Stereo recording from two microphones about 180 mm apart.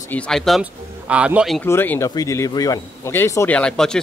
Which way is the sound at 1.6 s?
10° left (ahead or behind).